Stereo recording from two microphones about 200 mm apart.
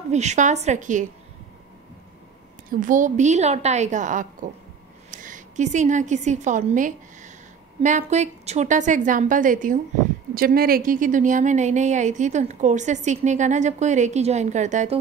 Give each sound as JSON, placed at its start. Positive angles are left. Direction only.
{"t": 0.1, "sound": "a woman's voice", "side_deg": -35}
{"t": 2.7, "sound": "a woman's voice", "side_deg": -40}